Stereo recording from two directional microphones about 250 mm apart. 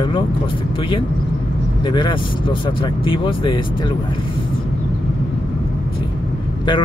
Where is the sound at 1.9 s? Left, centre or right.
Centre.